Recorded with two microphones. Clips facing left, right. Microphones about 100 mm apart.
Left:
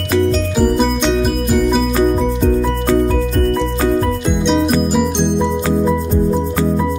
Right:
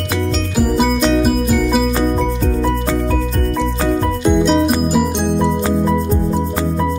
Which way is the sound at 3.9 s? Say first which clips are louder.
Right 1 dB; centre (ahead or behind).